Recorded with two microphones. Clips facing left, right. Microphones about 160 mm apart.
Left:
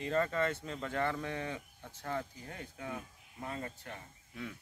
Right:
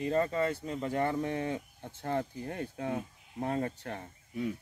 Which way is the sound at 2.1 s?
45° right (ahead or behind).